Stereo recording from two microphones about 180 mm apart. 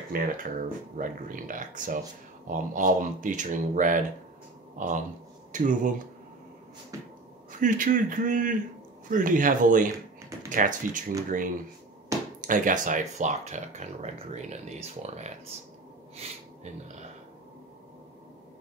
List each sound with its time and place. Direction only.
0.1 s speech: 55° right (ahead or behind)
7.6 s speech: 45° right (ahead or behind)